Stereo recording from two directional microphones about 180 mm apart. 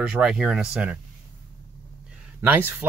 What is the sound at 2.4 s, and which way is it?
Speech, 10° right (ahead or behind).